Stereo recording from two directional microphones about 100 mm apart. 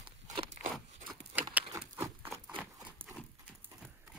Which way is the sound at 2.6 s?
15° right (ahead or behind).